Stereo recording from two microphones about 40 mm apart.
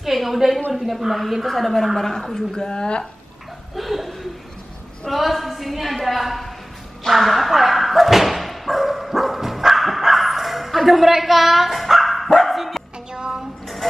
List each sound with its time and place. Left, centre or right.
0.0 s a woman's voice: centre; by 3.1 s left
3.7 s chuckle: centre
5.1 s a woman's voice: centre
7.1 s bow-wow: centre
13.1 s music: centre